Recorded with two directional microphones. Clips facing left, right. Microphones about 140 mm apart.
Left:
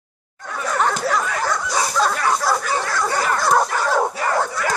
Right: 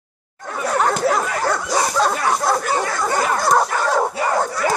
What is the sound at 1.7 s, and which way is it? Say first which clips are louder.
Dog: right 2 dB; 40° right (ahead or behind).